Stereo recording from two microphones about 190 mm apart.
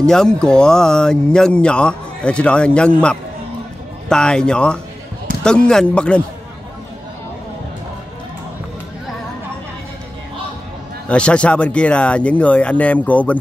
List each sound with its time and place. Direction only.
0.0 s speech: 5° left (ahead or behind)
11.1 s speech: 5° left (ahead or behind)